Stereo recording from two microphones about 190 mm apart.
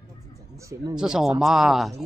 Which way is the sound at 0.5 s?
15° right (ahead or behind).